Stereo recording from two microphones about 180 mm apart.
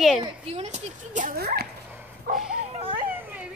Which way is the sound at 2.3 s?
55° right (ahead or behind).